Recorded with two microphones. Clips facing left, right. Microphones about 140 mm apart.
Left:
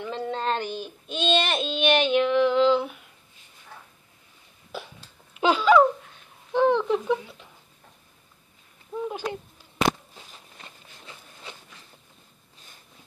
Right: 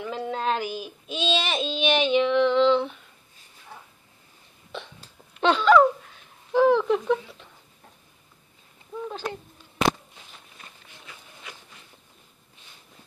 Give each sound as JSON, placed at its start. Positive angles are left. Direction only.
{"t": 0.0, "sound": "child singing", "side_deg": 0}
{"t": 4.7, "sound": "a sound", "side_deg": 5}
{"t": 5.3, "sound": "speech", "side_deg": 5}
{"t": 6.5, "sound": "child singing", "side_deg": 0}
{"t": 9.0, "sound": "a sound", "side_deg": 15}
{"t": 10.6, "sound": "walk", "side_deg": 30}